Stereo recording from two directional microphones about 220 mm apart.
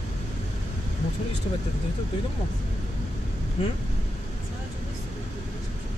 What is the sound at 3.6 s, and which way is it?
Speech, 30° left (ahead or behind).